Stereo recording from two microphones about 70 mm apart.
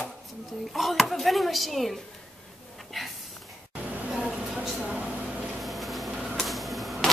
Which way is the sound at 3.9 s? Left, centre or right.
Centre.